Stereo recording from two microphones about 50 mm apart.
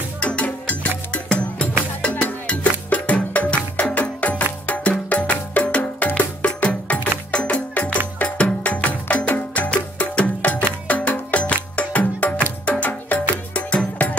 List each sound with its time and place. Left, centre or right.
0.2 s music: left